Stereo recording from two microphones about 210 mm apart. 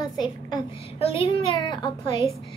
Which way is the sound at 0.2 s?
25° left (ahead or behind).